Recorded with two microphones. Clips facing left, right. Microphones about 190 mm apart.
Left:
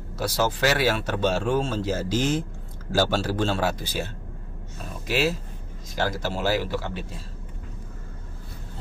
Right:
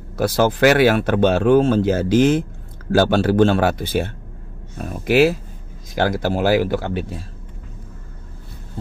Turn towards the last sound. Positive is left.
turn(degrees=-60)  # may be behind; listen again after turning